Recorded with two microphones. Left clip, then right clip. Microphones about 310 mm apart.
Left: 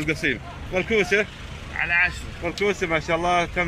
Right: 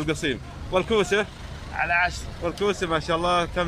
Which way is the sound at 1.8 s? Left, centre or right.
Right.